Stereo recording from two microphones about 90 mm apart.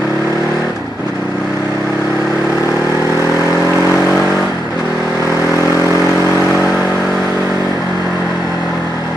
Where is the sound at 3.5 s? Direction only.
35° left (ahead or behind).